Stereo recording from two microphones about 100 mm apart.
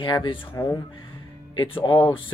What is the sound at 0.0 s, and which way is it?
Speech, 55° left (ahead or behind).